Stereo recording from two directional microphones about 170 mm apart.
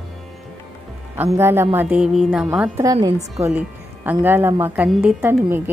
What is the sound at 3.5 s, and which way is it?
Music, 10° right (ahead or behind).